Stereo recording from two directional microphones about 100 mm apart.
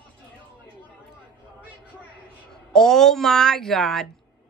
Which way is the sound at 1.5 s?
15° right (ahead or behind).